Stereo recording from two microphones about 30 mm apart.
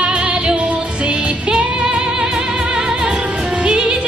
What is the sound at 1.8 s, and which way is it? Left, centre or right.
Music, right.